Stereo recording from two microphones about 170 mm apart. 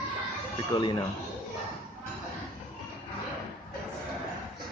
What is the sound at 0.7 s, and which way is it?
Speech, 25° left (ahead or behind).